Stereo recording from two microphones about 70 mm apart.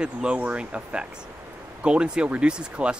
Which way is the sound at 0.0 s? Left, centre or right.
Centre.